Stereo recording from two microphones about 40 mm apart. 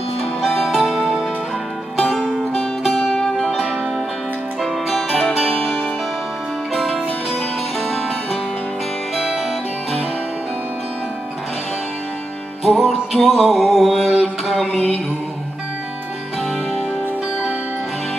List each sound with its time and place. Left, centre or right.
0.4 s music: centre
2.1 s music: centre
2.9 s music: centre
4.6 s music: centre
9.1 s music: centre
12.6 s music: centre